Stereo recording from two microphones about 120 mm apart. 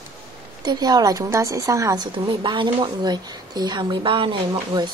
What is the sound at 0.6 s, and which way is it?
Speech, 35° right (ahead or behind).